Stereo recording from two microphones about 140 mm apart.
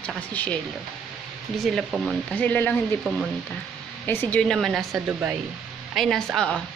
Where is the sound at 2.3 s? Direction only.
10° left (ahead or behind).